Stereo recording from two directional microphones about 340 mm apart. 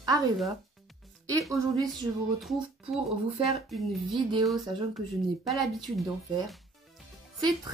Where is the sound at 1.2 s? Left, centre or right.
Centre.